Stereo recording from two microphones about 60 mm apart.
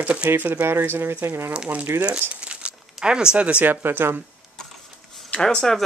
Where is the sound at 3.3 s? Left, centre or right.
Right.